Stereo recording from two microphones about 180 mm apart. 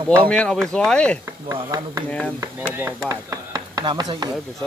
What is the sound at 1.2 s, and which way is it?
Speech, 15° right (ahead or behind).